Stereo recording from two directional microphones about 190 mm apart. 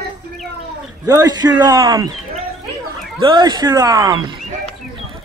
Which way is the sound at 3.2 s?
20° right (ahead or behind).